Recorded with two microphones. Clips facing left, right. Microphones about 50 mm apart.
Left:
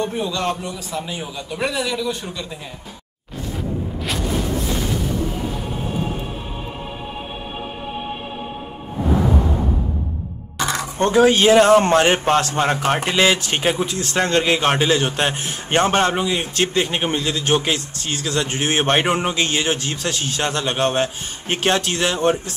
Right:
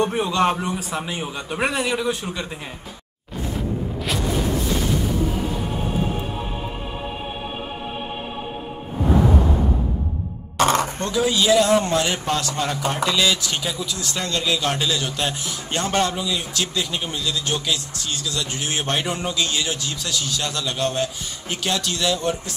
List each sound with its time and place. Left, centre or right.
0.0 s a man's voice: right
0.5 s a man's voice: centre
1.7 s a man's voice: right
3.5 s a sound: centre
10.6 s music: right
11.0 s speech: left